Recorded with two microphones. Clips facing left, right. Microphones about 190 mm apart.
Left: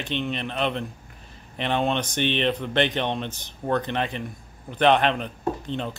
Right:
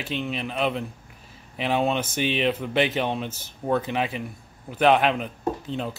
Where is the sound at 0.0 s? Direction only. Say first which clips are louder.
Left 1 dB; 5° right (ahead or behind).